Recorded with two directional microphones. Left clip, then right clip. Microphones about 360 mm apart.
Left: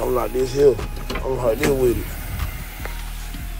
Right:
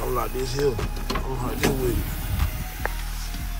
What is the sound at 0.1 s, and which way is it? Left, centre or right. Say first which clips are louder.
Speech: left 6 dB; centre.